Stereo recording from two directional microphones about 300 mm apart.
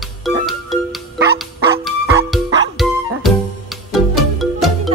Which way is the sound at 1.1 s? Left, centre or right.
Right.